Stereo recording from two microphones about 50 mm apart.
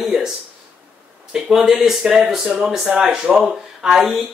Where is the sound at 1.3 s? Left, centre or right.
Centre.